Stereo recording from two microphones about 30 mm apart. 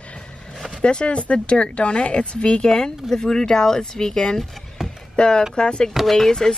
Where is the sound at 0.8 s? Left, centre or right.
Left.